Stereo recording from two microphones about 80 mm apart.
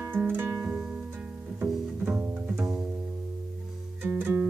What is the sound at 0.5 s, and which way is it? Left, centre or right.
Music, centre.